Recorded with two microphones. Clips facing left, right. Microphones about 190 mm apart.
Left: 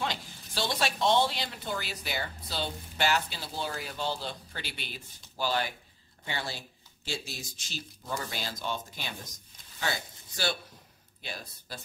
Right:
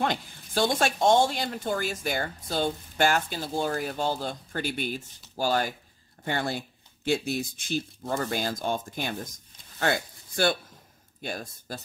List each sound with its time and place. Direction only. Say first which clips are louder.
0.0 s speech: right 6 dB; 50° right (ahead or behind)